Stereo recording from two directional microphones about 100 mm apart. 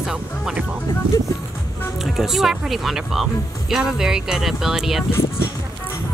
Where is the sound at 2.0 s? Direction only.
5° right (ahead or behind).